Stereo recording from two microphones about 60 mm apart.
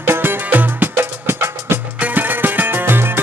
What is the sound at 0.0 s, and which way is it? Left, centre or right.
Music, right.